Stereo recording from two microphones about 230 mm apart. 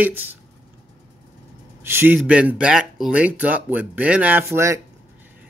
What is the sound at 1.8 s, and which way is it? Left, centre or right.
Speech, centre.